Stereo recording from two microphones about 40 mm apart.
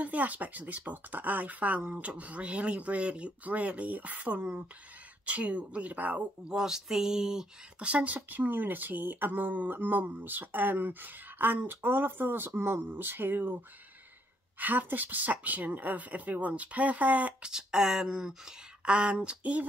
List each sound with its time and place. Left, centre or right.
0.0 s speech: right
6.5 s speech: centre
7.8 s speech: right
8.3 s speech: right
14.6 s speech: right
17.4 s speech: centre
18.9 s speech: right